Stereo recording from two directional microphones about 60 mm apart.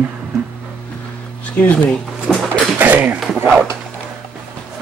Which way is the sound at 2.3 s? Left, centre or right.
Centre.